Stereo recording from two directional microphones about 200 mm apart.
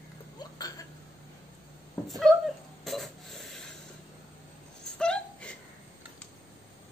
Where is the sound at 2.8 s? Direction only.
Centre (ahead or behind).